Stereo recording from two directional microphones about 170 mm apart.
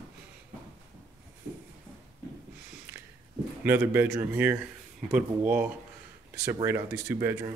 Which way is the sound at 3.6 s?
15° right (ahead or behind).